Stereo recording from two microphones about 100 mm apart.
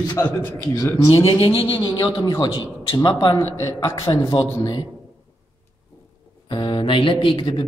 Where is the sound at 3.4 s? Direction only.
30° left (ahead or behind).